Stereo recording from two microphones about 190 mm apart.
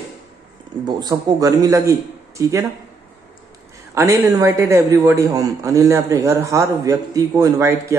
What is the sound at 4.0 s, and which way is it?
A man's voice, 15° right (ahead or behind).